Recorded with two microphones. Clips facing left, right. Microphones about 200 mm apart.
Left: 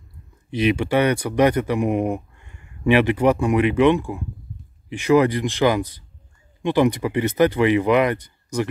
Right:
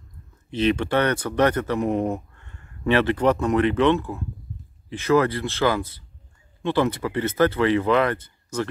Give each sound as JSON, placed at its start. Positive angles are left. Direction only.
{"t": 0.5, "sound": "speech", "side_deg": 10}